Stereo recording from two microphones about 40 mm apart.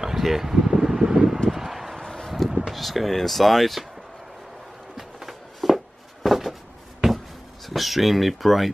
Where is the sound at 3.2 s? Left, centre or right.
Centre.